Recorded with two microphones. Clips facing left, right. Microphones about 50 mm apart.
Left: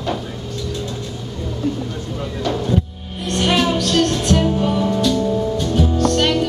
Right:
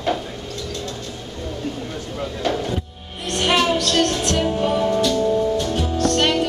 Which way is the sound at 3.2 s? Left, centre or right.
Centre.